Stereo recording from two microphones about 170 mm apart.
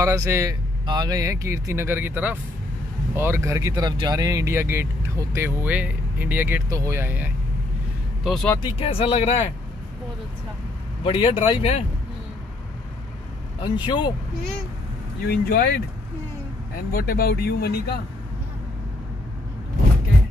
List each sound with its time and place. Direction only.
0.0 s speech: 20° right (ahead or behind)
8.2 s speech: centre (ahead or behind)
8.6 s speech: 35° left (ahead or behind)
11.1 s speech: 30° left (ahead or behind)
13.6 s speech: 25° left (ahead or behind)
15.2 s speech: 60° left (ahead or behind)
16.9 s speech: 60° left (ahead or behind)